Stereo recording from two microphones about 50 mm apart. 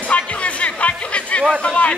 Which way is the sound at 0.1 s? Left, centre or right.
Left.